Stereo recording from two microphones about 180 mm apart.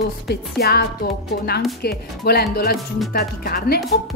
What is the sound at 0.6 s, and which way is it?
Speech, 60° left (ahead or behind).